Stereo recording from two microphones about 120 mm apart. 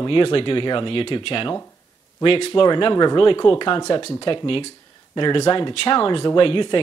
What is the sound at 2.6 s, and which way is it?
Speech, 35° left (ahead or behind).